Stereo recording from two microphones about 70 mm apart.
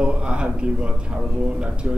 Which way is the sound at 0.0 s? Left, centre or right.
Centre.